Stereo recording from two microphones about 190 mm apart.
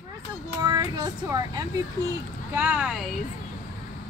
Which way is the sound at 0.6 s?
20° right (ahead or behind).